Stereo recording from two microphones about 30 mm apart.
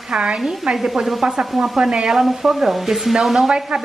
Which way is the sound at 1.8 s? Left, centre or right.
Right.